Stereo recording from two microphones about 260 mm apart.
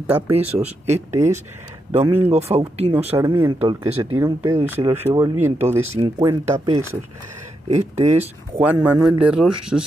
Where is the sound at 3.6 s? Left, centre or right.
Right.